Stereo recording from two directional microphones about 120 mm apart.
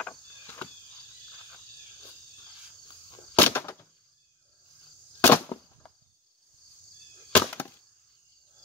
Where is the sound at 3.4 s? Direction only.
20° left (ahead or behind).